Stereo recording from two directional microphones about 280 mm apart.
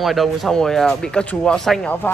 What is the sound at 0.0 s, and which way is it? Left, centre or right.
Speech, centre.